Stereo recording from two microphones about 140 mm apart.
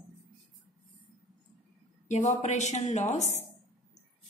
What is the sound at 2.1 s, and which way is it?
Speech, 55° left (ahead or behind).